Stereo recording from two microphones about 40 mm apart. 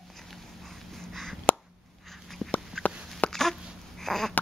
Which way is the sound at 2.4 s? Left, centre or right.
Centre.